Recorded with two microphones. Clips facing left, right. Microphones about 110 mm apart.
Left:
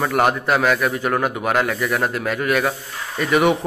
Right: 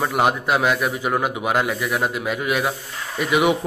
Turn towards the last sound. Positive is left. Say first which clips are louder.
# left 2 dB
turn(degrees=-10)  # may be behind; listen again after turning